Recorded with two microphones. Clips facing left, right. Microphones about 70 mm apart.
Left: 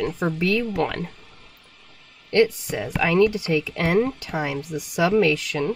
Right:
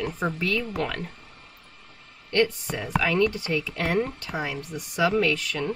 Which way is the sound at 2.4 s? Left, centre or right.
Centre.